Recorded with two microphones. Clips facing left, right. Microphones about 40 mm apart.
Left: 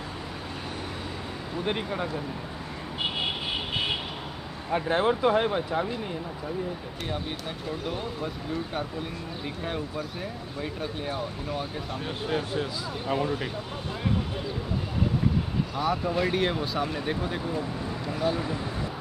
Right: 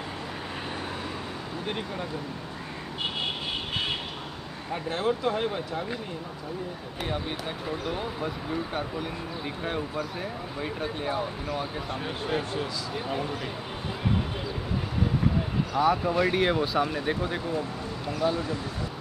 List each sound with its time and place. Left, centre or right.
3.7 s vehicle: centre
4.7 s speech: left
7.8 s speech: centre
10.6 s speech: centre
15.7 s speech: centre
18.2 s speech: centre